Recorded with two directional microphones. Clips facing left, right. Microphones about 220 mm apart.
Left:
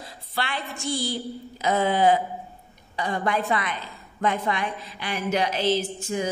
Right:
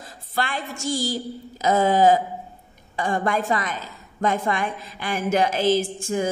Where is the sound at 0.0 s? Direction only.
50° right (ahead or behind).